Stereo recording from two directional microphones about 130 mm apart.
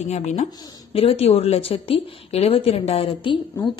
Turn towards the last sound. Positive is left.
turn(degrees=40)  # may be behind; listen again after turning